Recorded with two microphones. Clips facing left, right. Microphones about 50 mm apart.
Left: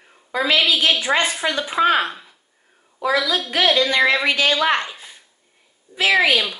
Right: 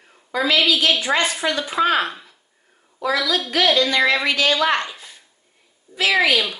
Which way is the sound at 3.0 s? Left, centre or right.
Centre.